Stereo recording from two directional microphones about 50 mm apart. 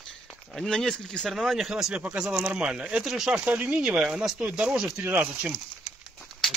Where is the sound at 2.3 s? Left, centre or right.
Centre.